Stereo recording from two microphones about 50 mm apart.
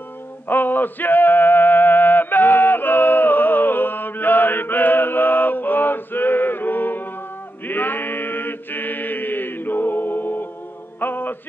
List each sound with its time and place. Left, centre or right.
0.5 s male singing: left
7.6 s chant: left
11.0 s music: left